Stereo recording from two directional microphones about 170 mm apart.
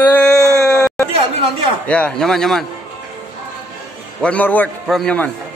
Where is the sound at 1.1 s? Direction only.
30° right (ahead or behind).